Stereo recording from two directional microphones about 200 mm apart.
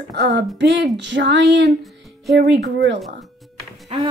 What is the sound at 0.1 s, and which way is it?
Speech, 55° right (ahead or behind).